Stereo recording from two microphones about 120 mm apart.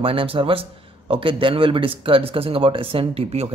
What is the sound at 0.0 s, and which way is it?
Speech, 50° right (ahead or behind).